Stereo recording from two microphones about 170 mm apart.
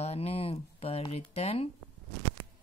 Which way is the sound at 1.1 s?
35° left (ahead or behind).